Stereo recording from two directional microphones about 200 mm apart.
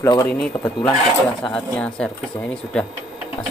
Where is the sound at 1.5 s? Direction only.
5° left (ahead or behind).